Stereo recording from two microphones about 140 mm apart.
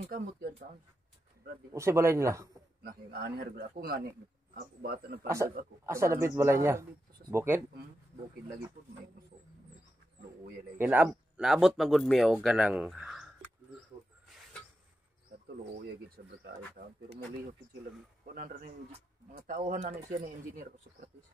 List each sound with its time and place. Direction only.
0.1 s a man's voice: 90° right
1.7 s speech: 20° right (ahead or behind)
2.8 s a man's voice: 90° right
5.9 s speech: 20° right (ahead or behind)
10.8 s speech: 10° right (ahead or behind)
16.2 s a man's voice: 90° right
16.8 s speech: 75° right (ahead or behind)
18.2 s speech: 85° right; by 19.8 s 70° right (ahead or behind)